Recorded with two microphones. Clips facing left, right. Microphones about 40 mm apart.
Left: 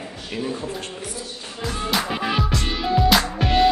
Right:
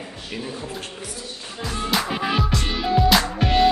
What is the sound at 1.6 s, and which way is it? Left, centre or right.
Music, centre.